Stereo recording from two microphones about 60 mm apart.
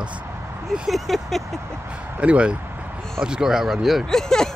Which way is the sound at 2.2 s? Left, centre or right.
Right.